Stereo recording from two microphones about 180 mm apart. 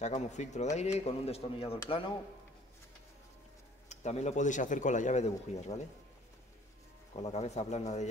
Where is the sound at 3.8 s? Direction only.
40° left (ahead or behind).